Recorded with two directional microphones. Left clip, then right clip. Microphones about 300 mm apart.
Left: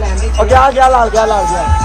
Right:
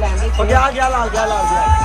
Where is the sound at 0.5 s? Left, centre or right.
Left.